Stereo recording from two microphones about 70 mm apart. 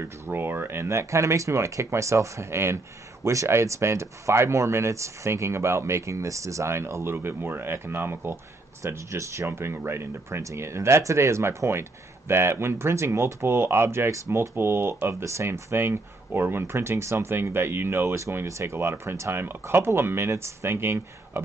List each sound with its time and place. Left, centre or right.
0.2 s speech: right
8.8 s speech: right
9.5 s speech: right
14.5 s speech: right